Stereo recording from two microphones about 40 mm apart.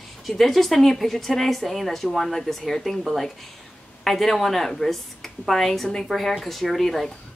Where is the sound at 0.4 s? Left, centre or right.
Centre.